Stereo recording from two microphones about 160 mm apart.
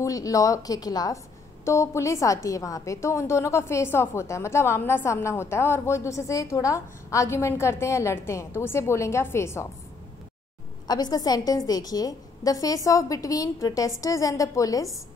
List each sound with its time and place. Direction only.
0.0 s a woman's voice: 20° left (ahead or behind)
10.9 s a woman's voice: 25° left (ahead or behind)